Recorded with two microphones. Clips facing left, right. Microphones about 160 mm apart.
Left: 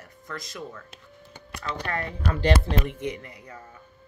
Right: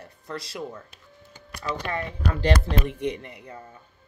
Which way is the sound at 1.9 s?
20° right (ahead or behind).